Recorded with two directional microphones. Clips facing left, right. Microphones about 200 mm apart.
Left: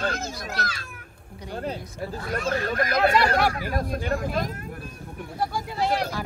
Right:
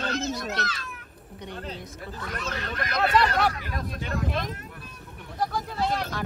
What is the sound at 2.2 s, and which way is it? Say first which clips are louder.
Speech: left 7 dB; 45° left (ahead or behind).